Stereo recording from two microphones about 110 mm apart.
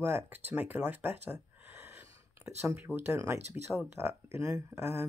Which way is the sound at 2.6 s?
20° right (ahead or behind).